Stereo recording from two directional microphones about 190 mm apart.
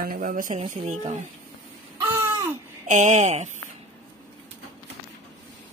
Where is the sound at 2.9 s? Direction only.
40° right (ahead or behind).